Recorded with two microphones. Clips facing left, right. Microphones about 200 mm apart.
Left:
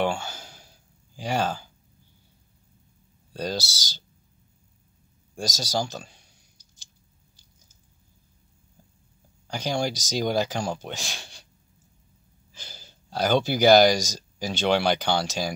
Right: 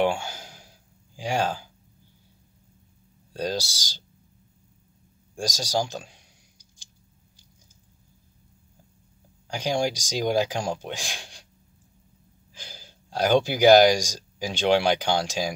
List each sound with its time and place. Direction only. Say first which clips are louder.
0.0 s sigh: right 2 dB; 15° right (ahead or behind)
1.1 s speech: right 1 dB; 10° right (ahead or behind)
3.4 s speech: right 2 dB; 10° right (ahead or behind)
5.4 s speech: right 2 dB; 15° right (ahead or behind)
9.5 s speech: right 2 dB; 10° right (ahead or behind)
12.5 s speech: right 2 dB; 10° right (ahead or behind)